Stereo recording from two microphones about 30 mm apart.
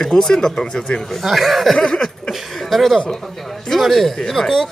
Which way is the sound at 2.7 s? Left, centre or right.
Centre.